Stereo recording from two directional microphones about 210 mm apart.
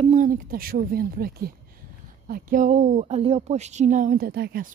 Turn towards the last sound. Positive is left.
turn(degrees=-50)  # may be behind; listen again after turning